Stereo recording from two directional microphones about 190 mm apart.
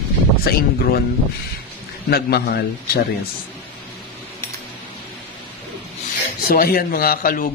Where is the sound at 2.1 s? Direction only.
60° left (ahead or behind).